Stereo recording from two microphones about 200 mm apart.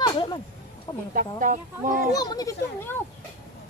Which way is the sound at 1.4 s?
40° right (ahead or behind).